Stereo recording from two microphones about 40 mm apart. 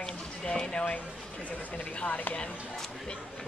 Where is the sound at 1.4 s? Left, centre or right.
Left.